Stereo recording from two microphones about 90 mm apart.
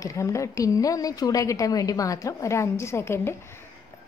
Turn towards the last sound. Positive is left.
turn(degrees=30)  # may be behind; listen again after turning